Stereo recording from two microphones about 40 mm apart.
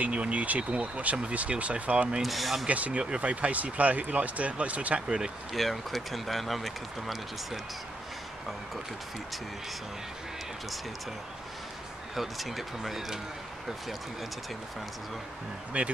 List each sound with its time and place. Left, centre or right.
0.0 s speech: right
2.2 s speech: centre
2.7 s speech: right
5.0 s speech: centre
5.5 s speech: centre
12.2 s speech: centre
15.7 s speech: right